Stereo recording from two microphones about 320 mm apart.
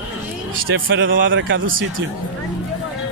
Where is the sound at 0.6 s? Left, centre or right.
Right.